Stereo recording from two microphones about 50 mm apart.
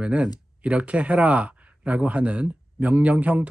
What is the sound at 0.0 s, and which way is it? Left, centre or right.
Speech, right.